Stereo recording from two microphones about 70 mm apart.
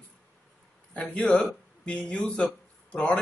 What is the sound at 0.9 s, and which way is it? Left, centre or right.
Speech, centre.